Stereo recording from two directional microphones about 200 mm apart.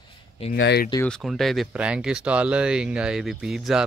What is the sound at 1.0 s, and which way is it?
Speech, centre (ahead or behind).